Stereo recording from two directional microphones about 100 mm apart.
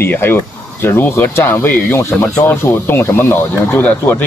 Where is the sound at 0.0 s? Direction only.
20° left (ahead or behind).